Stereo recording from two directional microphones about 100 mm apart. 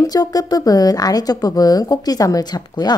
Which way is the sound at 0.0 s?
40° left (ahead or behind).